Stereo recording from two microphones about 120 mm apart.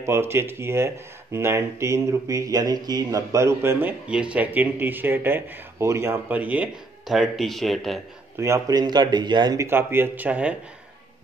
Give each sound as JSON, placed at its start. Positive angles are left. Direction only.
{"t": 0.0, "sound": "speech", "side_deg": -20}
{"t": 4.1, "sound": "speech", "side_deg": -10}
{"t": 7.1, "sound": "speech", "side_deg": 0}
{"t": 8.4, "sound": "speech", "side_deg": -25}
{"t": 9.6, "sound": "speech", "side_deg": -20}